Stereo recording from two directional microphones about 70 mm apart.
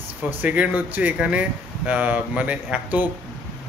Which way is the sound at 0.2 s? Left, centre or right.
Right.